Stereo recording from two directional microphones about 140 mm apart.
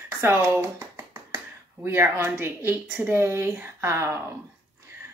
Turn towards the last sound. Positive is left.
turn(degrees=-20)  # may be behind; listen again after turning